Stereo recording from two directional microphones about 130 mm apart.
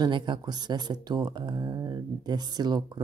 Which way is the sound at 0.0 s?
35° right (ahead or behind).